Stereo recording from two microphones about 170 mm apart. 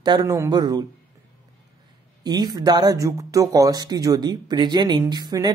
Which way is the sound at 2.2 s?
25° right (ahead or behind).